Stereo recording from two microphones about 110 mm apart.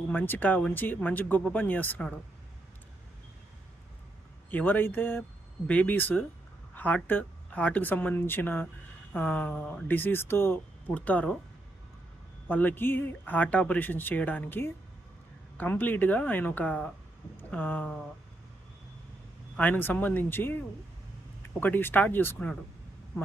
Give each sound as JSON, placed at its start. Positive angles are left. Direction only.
{"t": 0.1, "sound": "speech", "side_deg": 15}
{"t": 4.5, "sound": "speech", "side_deg": 15}
{"t": 12.4, "sound": "speech", "side_deg": 15}
{"t": 19.5, "sound": "speech", "side_deg": 15}